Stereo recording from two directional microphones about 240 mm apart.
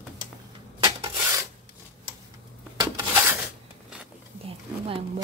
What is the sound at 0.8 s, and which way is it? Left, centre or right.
Rub, centre.